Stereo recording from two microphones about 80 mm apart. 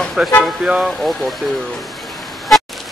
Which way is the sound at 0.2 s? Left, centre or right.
Centre.